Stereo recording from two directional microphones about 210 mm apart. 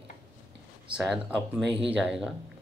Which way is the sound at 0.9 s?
5° right (ahead or behind).